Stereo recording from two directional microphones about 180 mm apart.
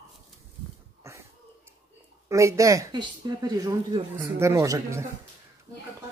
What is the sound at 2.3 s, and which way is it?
Speech, 15° right (ahead or behind).